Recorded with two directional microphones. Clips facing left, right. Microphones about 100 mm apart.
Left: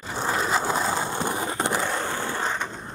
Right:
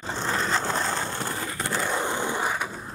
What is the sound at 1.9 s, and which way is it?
Skateboard, 15° right (ahead or behind).